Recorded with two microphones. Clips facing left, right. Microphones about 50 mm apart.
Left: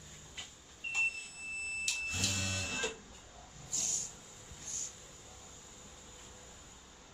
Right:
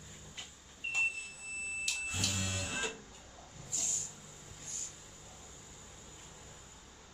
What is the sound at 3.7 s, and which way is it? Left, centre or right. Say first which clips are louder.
Vehicle: even; centre.